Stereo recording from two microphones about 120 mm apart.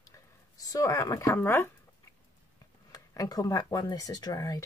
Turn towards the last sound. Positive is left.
turn(degrees=30)  # may be behind; listen again after turning